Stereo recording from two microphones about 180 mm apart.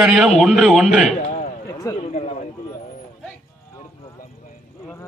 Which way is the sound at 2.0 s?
35° left (ahead or behind).